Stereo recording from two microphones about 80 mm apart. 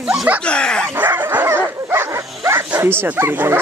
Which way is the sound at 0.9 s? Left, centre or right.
Right.